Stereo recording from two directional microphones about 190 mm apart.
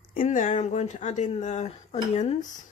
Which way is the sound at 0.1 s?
45° left (ahead or behind).